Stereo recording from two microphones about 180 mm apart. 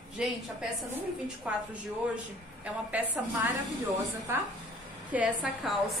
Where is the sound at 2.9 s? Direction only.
10° right (ahead or behind).